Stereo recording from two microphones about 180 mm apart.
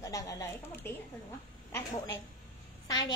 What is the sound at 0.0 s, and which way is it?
Speech, 20° left (ahead or behind).